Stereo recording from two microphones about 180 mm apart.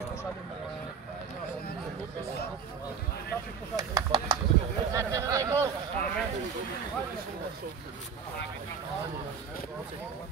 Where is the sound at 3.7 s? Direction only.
20° right (ahead or behind).